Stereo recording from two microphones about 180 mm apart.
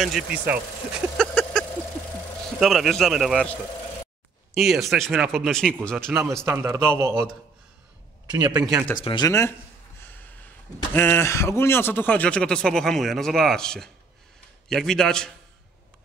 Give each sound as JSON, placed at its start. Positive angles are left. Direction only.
{"t": 0.0, "sound": "speech", "side_deg": -5}
{"t": 1.1, "sound": "a sound", "side_deg": 5}
{"t": 2.6, "sound": "speech", "side_deg": 0}
{"t": 4.6, "sound": "speech", "side_deg": 0}
{"t": 6.4, "sound": "a man's voice", "side_deg": -15}
{"t": 8.3, "sound": "speech", "side_deg": -20}
{"t": 8.9, "sound": "speech", "side_deg": 25}
{"t": 10.9, "sound": "speech", "side_deg": 10}